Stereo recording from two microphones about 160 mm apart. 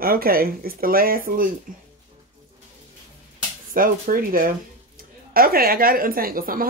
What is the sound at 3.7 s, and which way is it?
Speech, 60° right (ahead or behind).